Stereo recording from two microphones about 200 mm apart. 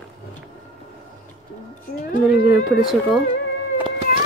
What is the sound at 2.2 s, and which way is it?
Speech, centre (ahead or behind).